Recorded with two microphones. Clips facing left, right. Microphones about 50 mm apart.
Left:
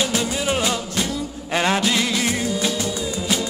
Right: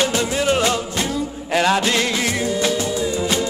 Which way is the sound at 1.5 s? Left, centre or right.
Left.